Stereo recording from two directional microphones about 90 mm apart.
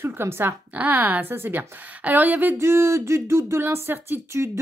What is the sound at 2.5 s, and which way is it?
Speech, 30° right (ahead or behind).